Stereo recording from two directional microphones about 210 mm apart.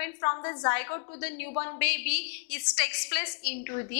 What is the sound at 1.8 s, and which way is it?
A woman's voice, 10° left (ahead or behind).